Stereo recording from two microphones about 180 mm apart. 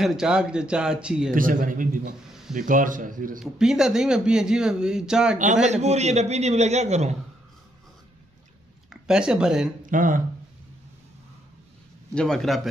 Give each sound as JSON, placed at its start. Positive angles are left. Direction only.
{"t": 0.0, "sound": "a man's voice", "side_deg": -5}
{"t": 1.3, "sound": "a man's voice", "side_deg": -50}
{"t": 3.3, "sound": "a man's voice", "side_deg": -5}
{"t": 5.4, "sound": "a man's voice", "side_deg": -40}
{"t": 8.9, "sound": "speech", "side_deg": -5}
{"t": 9.8, "sound": "speech", "side_deg": -50}
{"t": 12.1, "sound": "a man's voice", "side_deg": 5}